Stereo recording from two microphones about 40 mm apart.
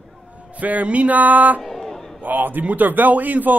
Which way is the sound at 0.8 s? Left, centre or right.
Right.